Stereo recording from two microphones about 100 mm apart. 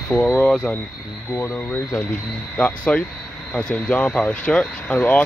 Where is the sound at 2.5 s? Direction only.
15° left (ahead or behind).